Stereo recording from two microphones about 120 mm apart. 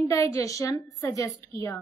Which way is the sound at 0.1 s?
25° left (ahead or behind).